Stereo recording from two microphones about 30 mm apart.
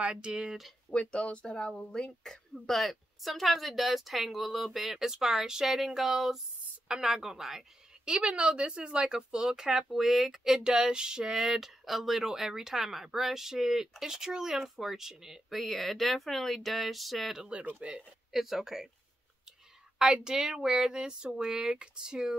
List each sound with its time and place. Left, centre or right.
0.3 s a woman's voice: right
0.9 s speech: left
2.2 s speech: centre
2.7 s speech: centre
6.9 s speech: centre
8.0 s a woman's voice: right
9.8 s speech: centre
10.6 s speech: right
11.3 s speech: centre
12.3 s speech: centre
15.5 s speech: centre
17.7 s a woman's voice: right
18.3 s speech: centre
20.2 s speech: right